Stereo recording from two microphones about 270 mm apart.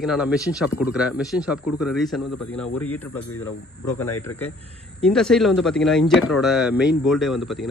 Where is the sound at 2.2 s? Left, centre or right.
Left.